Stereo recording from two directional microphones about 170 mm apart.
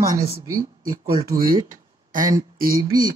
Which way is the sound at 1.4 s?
55° right (ahead or behind).